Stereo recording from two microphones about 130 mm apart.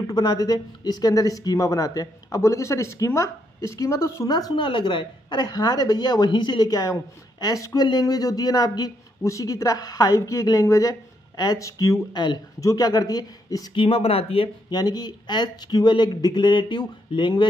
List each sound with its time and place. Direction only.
0.0 s a woman's voice: 30° left (ahead or behind)
13.8 s speech: 50° left (ahead or behind)
14.7 s speech: 30° left (ahead or behind)